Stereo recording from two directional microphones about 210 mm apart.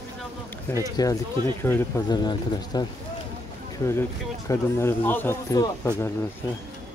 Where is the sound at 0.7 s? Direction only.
15° left (ahead or behind).